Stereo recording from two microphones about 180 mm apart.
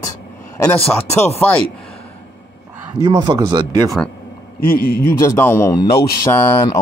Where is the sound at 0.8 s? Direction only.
10° left (ahead or behind).